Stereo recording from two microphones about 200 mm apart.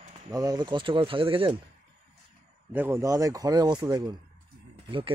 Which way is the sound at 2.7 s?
10° right (ahead or behind).